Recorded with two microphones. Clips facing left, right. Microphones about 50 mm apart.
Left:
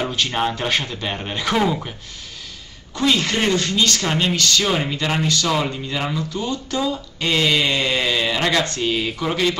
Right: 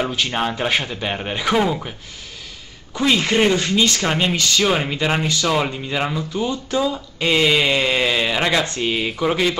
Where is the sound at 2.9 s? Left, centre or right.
Centre.